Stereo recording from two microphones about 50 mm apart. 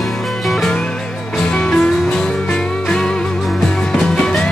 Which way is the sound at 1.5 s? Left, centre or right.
Left.